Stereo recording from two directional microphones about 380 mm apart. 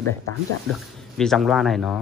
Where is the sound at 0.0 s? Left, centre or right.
Left.